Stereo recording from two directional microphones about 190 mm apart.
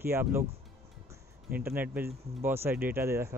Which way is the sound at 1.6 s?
10° right (ahead or behind).